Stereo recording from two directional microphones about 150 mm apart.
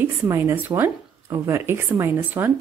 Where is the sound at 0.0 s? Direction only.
15° right (ahead or behind).